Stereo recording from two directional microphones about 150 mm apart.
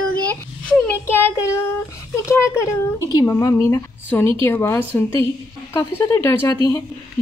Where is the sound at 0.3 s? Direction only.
10° left (ahead or behind).